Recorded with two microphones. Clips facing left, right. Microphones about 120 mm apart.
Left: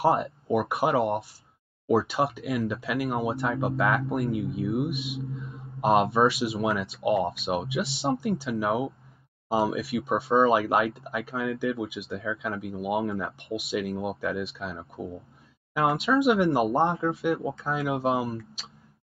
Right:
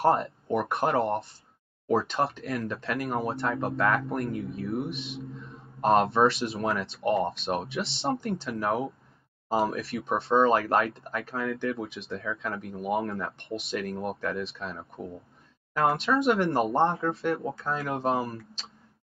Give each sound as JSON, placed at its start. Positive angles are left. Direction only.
{"t": 0.0, "sound": "speech", "side_deg": 5}